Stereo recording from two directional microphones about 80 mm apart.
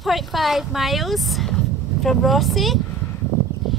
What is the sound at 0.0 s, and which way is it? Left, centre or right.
Speech, centre.